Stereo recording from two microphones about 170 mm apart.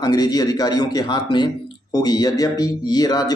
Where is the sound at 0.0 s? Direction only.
25° left (ahead or behind).